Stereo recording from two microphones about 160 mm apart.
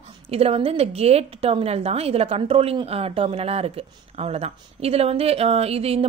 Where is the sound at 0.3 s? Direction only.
40° right (ahead or behind).